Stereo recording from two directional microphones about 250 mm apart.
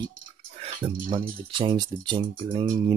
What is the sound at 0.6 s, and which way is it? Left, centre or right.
Speech, right.